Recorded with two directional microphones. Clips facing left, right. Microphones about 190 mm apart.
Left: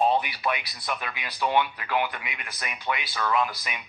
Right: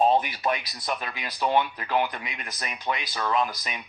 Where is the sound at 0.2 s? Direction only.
45° right (ahead or behind); by 3.4 s 25° right (ahead or behind).